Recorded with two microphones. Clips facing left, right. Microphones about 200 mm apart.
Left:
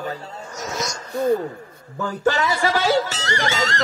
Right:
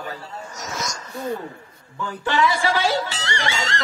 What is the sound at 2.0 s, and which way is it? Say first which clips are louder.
Speech: left 1 dB; 45° left (ahead or behind).